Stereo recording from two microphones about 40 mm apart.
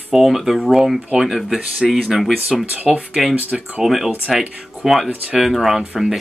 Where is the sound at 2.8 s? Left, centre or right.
Right.